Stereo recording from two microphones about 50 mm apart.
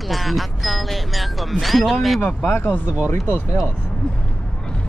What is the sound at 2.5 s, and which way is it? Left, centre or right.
Speech, left.